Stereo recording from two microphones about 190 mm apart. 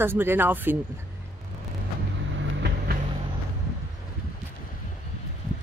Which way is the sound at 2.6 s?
60° right (ahead or behind).